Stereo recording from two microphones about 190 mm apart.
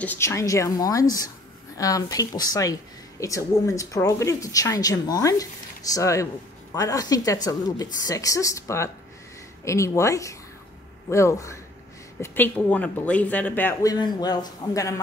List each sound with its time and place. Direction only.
0.0 s speech: 10° left (ahead or behind)
13.9 s a man's voice: 20° left (ahead or behind)